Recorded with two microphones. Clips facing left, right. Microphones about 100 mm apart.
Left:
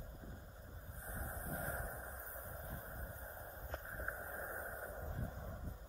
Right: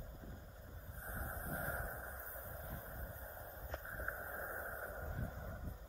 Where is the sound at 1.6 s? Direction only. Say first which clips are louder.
Right 1 dB; centre (ahead or behind).